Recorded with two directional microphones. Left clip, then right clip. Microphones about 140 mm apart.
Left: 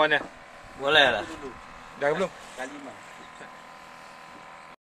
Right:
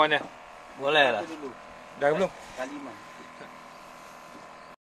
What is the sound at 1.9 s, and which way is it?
Speech, 5° right (ahead or behind).